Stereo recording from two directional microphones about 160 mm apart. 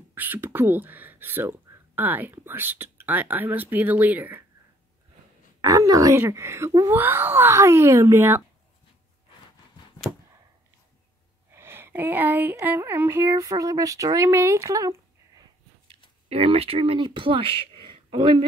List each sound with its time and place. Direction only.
0.1 s speech: 10° right (ahead or behind)
5.6 s a woman's voice: 20° right (ahead or behind)
11.5 s a woman's voice: 15° right (ahead or behind)
15.9 s speech: 35° right (ahead or behind)